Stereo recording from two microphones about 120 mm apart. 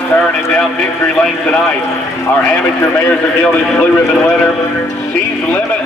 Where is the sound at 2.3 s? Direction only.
20° left (ahead or behind).